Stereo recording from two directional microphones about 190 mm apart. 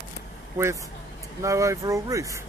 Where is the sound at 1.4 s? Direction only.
15° right (ahead or behind).